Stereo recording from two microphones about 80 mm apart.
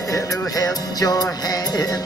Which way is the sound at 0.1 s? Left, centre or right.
Left.